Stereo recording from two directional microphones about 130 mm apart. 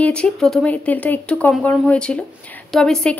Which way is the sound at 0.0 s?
10° left (ahead or behind).